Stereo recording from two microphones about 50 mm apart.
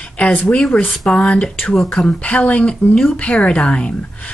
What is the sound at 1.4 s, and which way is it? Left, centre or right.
Speech, centre.